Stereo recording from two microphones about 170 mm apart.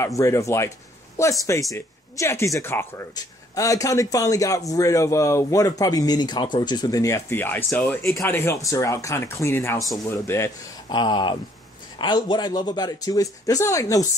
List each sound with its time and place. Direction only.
0.0 s a man's voice: 20° left (ahead or behind)
11.0 s a man's voice: 25° left (ahead or behind)